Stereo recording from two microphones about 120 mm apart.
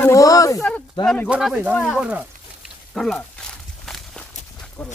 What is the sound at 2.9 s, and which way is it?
Speech, 5° left (ahead or behind).